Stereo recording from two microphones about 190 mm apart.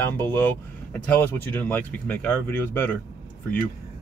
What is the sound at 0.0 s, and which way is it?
Speech, 10° left (ahead or behind).